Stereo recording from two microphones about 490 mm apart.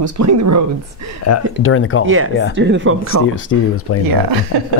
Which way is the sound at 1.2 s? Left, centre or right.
Left.